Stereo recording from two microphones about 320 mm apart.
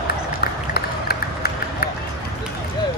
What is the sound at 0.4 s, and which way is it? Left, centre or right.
Run, left.